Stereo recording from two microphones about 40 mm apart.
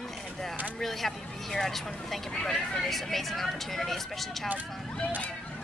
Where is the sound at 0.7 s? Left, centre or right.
Centre.